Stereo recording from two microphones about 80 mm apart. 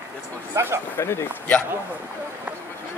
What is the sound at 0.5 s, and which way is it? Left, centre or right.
Speech, right.